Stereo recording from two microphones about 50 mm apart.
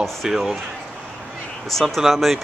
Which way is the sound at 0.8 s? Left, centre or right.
Centre.